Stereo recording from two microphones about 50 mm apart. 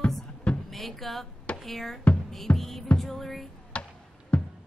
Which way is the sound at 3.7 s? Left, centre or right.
Left.